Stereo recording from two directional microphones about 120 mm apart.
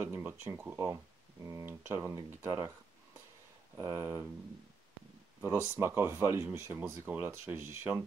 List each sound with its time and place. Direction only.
0.0 s speech: 15° right (ahead or behind)
3.7 s speech: 20° right (ahead or behind)
5.4 s speech: 25° right (ahead or behind)